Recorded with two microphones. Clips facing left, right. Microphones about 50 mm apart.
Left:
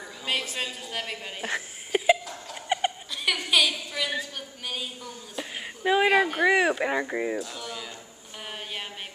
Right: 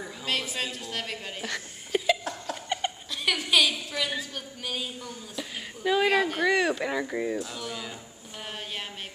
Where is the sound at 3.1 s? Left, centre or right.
Centre.